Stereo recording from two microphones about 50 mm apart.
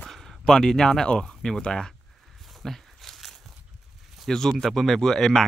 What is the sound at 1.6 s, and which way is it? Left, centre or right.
Speech, centre.